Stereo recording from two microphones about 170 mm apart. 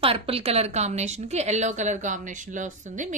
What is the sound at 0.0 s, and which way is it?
A woman's voice, 35° right (ahead or behind).